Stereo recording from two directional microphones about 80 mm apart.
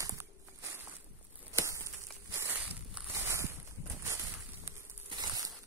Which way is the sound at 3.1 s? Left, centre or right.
Right.